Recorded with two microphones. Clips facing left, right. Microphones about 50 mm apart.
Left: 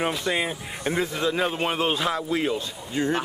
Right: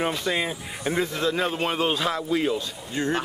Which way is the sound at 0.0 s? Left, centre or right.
Centre.